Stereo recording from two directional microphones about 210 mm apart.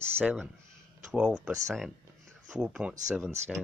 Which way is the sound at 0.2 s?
5° right (ahead or behind).